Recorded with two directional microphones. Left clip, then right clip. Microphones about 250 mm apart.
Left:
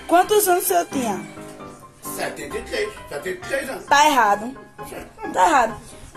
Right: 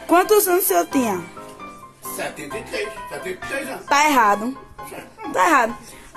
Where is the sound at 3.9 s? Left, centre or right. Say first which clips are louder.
Even; right.